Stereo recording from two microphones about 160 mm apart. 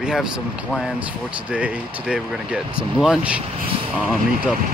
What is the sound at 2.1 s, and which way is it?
Speech, 5° right (ahead or behind).